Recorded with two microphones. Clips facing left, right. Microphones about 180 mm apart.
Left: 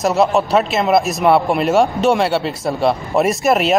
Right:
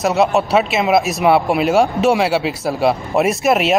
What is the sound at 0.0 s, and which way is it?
Speech, centre (ahead or behind).